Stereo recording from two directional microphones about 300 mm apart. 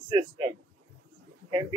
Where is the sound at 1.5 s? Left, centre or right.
Centre.